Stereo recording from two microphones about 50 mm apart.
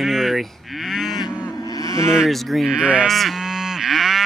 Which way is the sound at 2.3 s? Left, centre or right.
Centre.